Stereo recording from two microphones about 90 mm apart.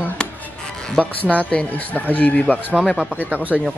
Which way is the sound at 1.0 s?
15° left (ahead or behind).